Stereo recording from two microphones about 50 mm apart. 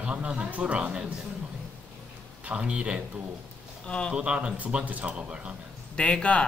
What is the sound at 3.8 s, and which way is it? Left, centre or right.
Speech, centre.